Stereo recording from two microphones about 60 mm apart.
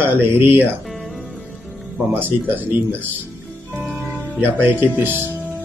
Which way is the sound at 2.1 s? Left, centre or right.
Right.